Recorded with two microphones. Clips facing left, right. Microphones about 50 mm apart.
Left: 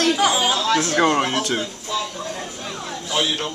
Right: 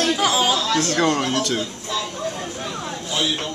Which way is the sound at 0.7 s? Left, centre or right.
Centre.